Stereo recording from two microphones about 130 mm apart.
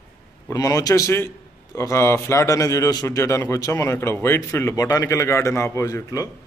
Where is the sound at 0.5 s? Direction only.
25° left (ahead or behind).